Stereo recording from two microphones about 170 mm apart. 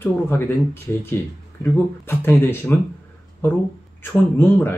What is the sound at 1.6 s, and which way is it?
Speech, 15° left (ahead or behind).